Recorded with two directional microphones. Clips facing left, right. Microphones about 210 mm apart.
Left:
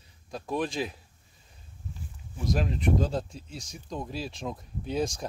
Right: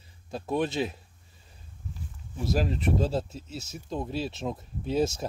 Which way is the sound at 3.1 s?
5° right (ahead or behind).